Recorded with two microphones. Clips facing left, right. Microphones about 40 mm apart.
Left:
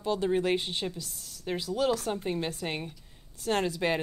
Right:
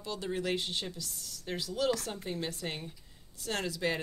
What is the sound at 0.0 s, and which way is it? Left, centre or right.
Speech, left.